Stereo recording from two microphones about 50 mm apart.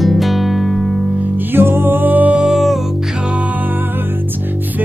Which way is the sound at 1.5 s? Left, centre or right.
Right.